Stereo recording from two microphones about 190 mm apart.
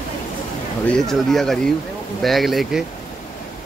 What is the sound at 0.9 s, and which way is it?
Speech, centre (ahead or behind).